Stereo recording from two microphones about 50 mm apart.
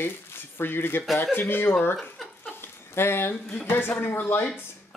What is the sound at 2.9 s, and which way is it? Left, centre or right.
Speech, left.